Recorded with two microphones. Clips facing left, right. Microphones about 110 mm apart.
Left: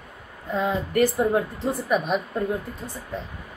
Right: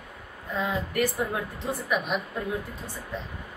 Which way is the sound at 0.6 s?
30° left (ahead or behind).